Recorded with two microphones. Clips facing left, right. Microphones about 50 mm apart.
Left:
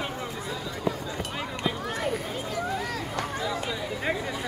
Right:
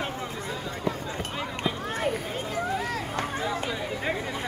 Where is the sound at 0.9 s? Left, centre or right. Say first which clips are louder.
Left 1 dB; centre.